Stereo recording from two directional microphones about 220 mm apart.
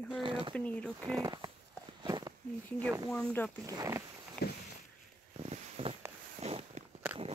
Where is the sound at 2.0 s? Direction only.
20° right (ahead or behind).